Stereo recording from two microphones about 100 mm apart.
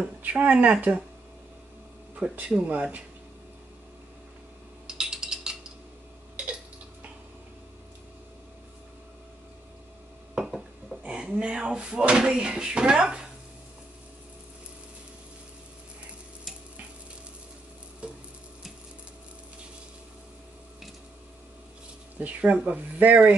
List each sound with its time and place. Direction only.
0.2 s speech: 15° right (ahead or behind)
2.1 s speech: 15° right (ahead or behind)
4.8 s ratchet: 5° right (ahead or behind)
10.3 s speech: 5° right (ahead or behind)
18.0 s stir: 10° right (ahead or behind)
22.2 s speech: 15° right (ahead or behind)